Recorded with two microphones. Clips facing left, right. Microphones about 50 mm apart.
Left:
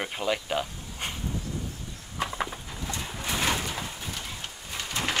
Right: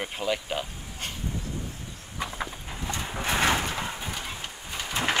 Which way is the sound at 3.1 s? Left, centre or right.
Right.